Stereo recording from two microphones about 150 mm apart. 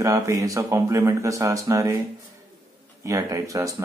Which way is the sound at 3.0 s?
20° right (ahead or behind).